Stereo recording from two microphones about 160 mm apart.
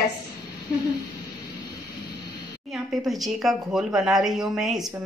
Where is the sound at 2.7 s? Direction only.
Centre (ahead or behind).